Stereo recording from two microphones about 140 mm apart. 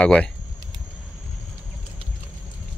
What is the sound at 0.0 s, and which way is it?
Speech, 10° left (ahead or behind).